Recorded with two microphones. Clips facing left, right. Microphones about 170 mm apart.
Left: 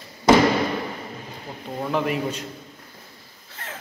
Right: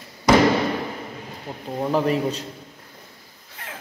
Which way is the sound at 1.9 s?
35° right (ahead or behind).